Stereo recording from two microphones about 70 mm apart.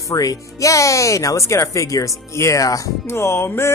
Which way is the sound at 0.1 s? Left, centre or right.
Left.